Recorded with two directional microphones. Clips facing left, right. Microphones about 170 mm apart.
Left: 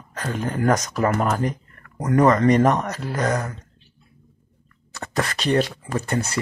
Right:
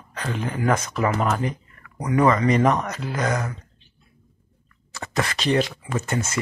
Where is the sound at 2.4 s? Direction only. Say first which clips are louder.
Left 2 dB; 40° left (ahead or behind).